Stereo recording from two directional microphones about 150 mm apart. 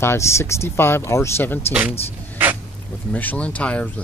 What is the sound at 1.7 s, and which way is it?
Speech, 10° right (ahead or behind).